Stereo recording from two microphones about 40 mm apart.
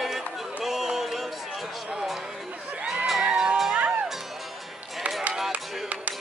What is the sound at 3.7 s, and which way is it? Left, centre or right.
Music, right.